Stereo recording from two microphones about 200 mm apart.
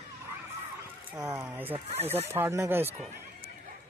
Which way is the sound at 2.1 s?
10° right (ahead or behind).